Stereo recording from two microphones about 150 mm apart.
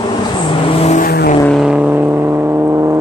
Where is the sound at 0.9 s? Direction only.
75° left (ahead or behind).